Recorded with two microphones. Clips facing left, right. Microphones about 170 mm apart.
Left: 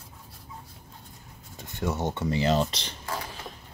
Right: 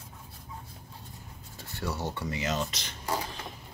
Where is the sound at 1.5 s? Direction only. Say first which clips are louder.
Left 5 dB; 20° left (ahead or behind).